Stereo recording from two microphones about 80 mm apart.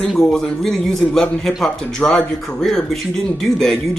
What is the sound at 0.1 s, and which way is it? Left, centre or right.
Speech, centre.